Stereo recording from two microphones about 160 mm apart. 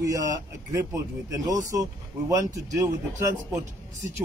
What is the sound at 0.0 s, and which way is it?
Speech, 20° right (ahead or behind).